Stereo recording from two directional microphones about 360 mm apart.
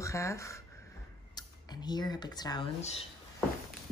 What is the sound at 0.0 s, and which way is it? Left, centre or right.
Speech, centre.